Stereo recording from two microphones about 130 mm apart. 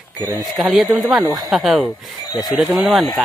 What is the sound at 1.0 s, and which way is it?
Speech, 30° right (ahead or behind).